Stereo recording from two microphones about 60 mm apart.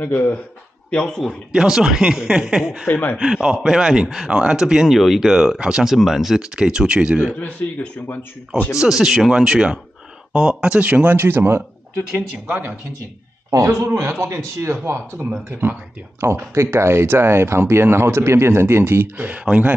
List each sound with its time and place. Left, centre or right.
0.0 s speech: left
0.8 s speech: centre
1.5 s speech: centre
2.9 s speech: left
3.2 s speech: centre
4.9 s speech: centre
7.3 s speech: left
8.7 s speech: centre; by 11.6 s right
13.5 s a man's voice: right
19.1 s speech: right